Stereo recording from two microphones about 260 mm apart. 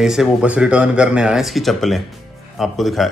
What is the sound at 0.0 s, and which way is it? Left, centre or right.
A man's voice, centre.